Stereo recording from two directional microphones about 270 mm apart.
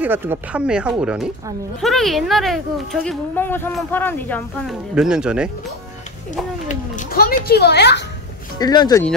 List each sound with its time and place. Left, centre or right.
0.0 s speech: centre
6.7 s children playing: left
8.5 s speech: centre